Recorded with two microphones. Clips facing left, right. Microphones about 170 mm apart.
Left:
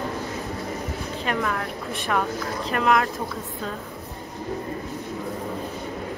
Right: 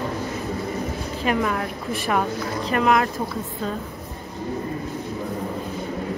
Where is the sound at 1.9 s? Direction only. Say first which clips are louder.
Right 2 dB; 5° right (ahead or behind).